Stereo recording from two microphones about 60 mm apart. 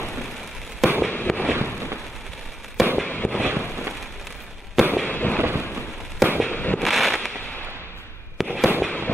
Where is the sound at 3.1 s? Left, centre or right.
Left.